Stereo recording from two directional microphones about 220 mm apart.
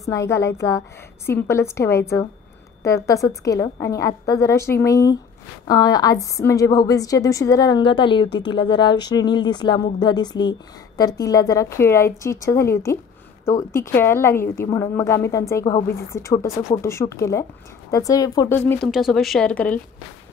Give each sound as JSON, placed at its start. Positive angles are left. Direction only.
{"t": 0.1, "sound": "a woman's voice", "side_deg": 15}
{"t": 18.9, "sound": "speech", "side_deg": 0}